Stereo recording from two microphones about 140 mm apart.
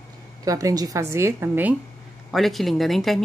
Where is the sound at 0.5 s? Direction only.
25° right (ahead or behind).